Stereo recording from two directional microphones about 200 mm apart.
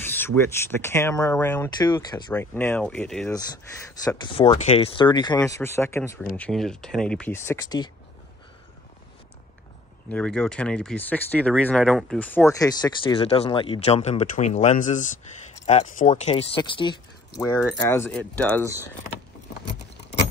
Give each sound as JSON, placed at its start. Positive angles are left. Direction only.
{"t": 0.0, "sound": "speech", "side_deg": 10}
{"t": 2.3, "sound": "speech", "side_deg": 10}
{"t": 4.2, "sound": "speech", "side_deg": 20}
{"t": 10.0, "sound": "speech", "side_deg": 5}
{"t": 17.4, "sound": "speech", "side_deg": 10}